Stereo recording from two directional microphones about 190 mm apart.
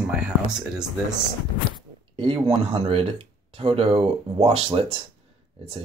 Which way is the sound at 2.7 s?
30° right (ahead or behind).